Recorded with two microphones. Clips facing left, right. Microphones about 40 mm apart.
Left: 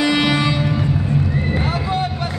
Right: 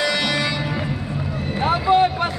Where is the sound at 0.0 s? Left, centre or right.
Centre.